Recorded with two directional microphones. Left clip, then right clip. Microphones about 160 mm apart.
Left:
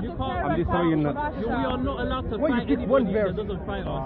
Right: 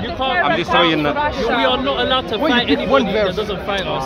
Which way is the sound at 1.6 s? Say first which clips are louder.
Right 13 dB; 5° right (ahead or behind).